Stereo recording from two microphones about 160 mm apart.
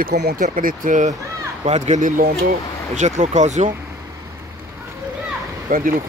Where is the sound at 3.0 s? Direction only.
45° right (ahead or behind).